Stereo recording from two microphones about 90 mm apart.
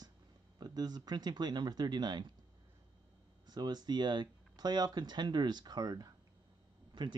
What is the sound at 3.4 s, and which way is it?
Speech, 50° right (ahead or behind).